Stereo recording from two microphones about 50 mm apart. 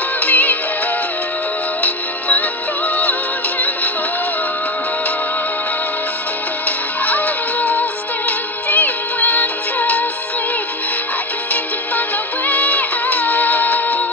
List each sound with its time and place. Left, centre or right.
0.2 s music: left
1.8 s music: left
7.1 s music: left
12.4 s music: left